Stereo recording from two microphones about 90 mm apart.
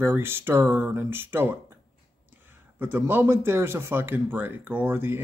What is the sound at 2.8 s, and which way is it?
Speech, 20° right (ahead or behind).